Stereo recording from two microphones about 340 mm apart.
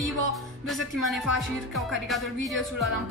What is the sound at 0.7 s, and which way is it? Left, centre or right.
Speech, centre.